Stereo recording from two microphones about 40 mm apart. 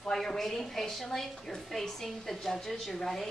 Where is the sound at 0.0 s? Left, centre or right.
Centre.